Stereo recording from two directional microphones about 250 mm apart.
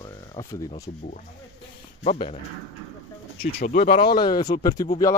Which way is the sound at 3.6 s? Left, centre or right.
Left.